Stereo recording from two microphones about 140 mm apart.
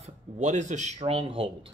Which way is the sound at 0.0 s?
55° right (ahead or behind).